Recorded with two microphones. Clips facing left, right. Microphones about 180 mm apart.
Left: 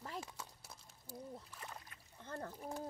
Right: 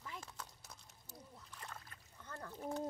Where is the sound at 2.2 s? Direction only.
30° left (ahead or behind).